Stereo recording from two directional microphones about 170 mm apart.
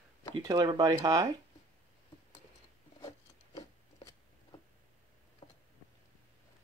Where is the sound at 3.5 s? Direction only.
25° left (ahead or behind).